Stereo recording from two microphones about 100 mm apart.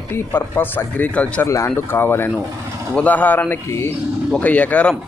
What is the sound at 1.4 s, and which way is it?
A man's voice, 30° left (ahead or behind).